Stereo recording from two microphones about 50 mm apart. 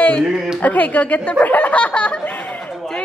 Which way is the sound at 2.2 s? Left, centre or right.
Left.